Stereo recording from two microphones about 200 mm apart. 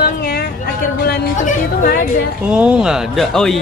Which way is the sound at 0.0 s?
50° left (ahead or behind).